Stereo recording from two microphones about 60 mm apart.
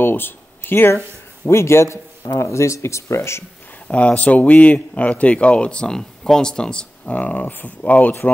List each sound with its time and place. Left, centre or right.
0.0 s speech: left
1.5 s speech: left
3.8 s a man's voice: left